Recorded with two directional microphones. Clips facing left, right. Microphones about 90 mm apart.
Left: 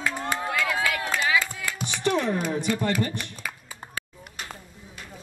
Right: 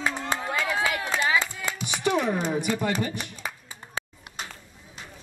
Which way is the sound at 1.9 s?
10° right (ahead or behind).